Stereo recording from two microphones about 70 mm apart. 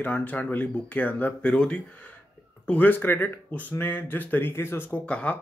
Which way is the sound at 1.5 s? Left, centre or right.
Centre.